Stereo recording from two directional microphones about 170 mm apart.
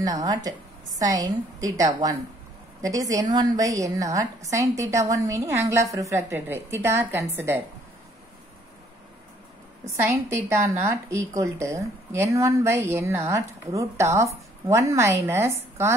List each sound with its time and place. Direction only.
0.0 s a woman's voice: 20° right (ahead or behind)
10.0 s speech: 15° right (ahead or behind)